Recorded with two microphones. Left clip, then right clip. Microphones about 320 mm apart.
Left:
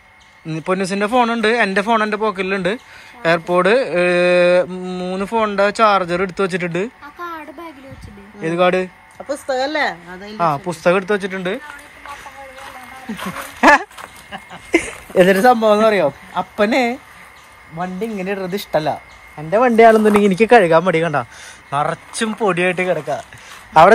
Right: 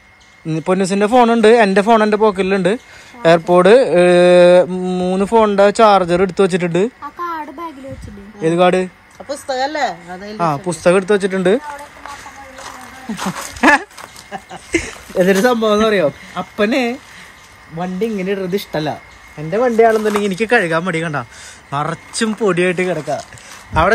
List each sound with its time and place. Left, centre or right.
0.5 s a man's voice: centre
9.3 s speech: left
10.2 s a man's voice: centre
13.6 s a sound: centre
14.7 s speech: centre
15.2 s speech: centre
19.8 s speech: left; by 23.2 s centre